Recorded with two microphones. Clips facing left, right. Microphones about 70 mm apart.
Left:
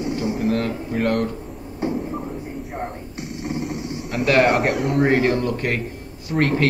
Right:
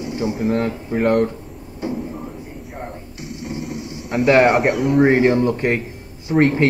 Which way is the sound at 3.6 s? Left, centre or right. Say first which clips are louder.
Left 1 dB; centre.